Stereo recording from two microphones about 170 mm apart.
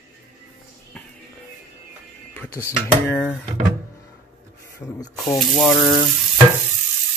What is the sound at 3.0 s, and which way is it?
Speech, 5° left (ahead or behind).